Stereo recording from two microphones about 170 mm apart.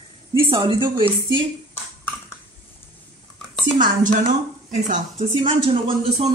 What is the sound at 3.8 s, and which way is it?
Speech, 50° right (ahead or behind).